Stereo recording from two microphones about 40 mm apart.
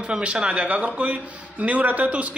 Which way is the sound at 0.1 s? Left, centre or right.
Right.